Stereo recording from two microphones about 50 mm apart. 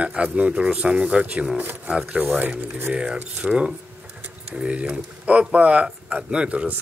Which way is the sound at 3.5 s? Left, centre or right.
Right.